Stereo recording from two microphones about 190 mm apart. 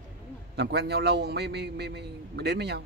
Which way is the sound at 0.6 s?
60° right (ahead or behind).